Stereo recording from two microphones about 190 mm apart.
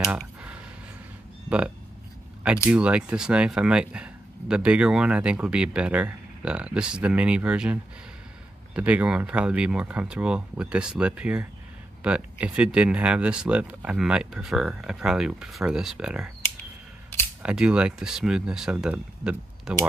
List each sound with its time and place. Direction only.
0.0 s a sound: 5° right (ahead or behind)
2.4 s speech: 5° right (ahead or behind)
17.4 s speech: 5° right (ahead or behind)